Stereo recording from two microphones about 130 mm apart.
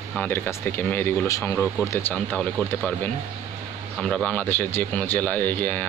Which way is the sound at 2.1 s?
10° left (ahead or behind).